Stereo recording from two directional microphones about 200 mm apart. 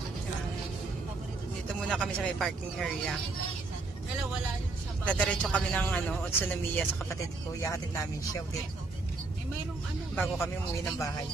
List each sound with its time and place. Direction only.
1.7 s speech: 5° left (ahead or behind)
5.0 s a man's voice: 5° left (ahead or behind)
10.1 s a man's voice: 10° left (ahead or behind)